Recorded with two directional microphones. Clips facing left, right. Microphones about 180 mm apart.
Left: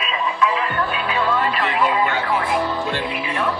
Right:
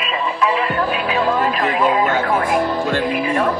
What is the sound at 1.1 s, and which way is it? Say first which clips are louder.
Music: right 2 dB; 40° right (ahead or behind).